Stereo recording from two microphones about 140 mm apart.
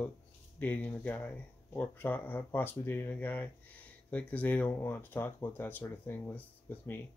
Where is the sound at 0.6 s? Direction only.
10° left (ahead or behind).